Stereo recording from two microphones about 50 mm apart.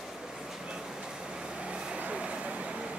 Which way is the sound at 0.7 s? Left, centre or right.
Centre.